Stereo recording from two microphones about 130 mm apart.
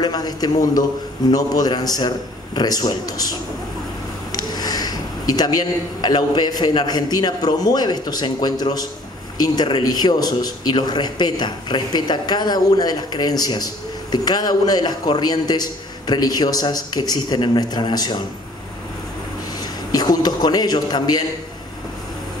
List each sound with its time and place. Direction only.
0.0 s a man's voice: 30° left (ahead or behind)
19.6 s a man's voice: 30° left (ahead or behind)